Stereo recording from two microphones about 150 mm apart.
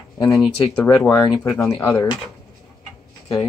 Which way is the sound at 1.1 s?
20° left (ahead or behind).